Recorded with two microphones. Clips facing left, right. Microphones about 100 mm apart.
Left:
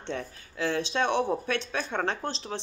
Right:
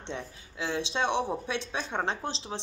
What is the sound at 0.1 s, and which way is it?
Speech, 20° right (ahead or behind).